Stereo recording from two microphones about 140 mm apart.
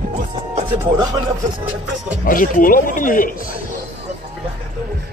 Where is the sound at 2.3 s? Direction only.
85° left.